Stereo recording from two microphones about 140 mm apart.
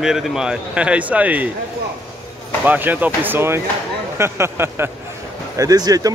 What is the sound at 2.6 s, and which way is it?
Speech, 15° right (ahead or behind).